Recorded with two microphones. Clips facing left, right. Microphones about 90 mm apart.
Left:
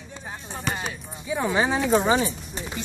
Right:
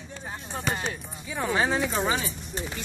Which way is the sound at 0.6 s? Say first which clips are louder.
Left 1 dB; 5° left (ahead or behind).